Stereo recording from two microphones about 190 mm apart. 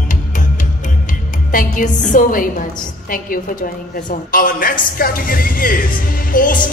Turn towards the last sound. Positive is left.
turn(degrees=45)  # may be behind; listen again after turning